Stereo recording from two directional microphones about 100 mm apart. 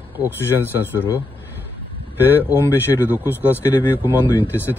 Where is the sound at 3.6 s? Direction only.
25° left (ahead or behind).